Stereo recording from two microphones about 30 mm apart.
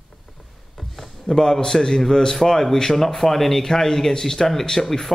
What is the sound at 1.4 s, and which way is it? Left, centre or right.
A man's voice, centre.